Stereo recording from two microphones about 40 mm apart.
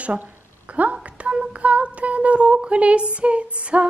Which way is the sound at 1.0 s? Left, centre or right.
Right.